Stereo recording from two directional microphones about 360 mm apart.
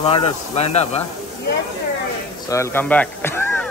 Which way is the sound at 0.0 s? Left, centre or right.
Centre.